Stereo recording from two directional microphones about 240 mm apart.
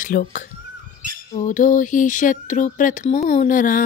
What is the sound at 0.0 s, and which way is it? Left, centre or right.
Speech, left.